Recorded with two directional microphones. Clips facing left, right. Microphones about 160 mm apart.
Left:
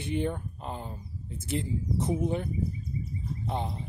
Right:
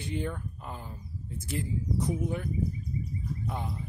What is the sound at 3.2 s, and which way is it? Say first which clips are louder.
Bird: left 2 dB; 25° left (ahead or behind).